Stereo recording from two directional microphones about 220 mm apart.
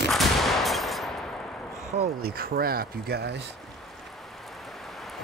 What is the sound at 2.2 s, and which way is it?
Speech, 40° right (ahead or behind).